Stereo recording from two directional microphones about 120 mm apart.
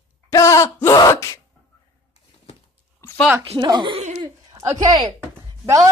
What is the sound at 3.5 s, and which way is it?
Speech, 35° right (ahead or behind).